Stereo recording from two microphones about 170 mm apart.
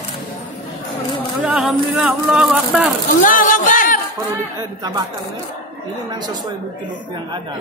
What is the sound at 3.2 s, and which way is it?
Speech, 50° left (ahead or behind).